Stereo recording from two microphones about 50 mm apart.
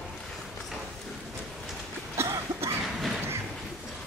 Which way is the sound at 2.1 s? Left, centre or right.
Right.